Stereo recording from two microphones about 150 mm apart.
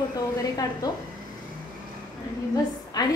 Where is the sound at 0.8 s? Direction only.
25° left (ahead or behind).